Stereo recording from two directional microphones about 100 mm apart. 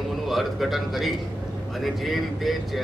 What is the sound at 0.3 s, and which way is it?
A man's voice, centre (ahead or behind).